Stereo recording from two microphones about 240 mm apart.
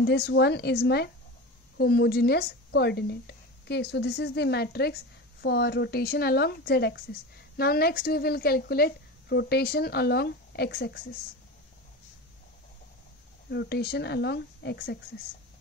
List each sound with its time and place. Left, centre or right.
0.0 s a woman's voice: left
13.5 s speech: left